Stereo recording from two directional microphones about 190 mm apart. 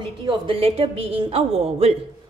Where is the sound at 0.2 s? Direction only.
25° right (ahead or behind).